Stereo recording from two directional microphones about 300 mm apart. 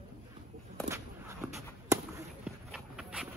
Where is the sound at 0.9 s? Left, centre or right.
Centre.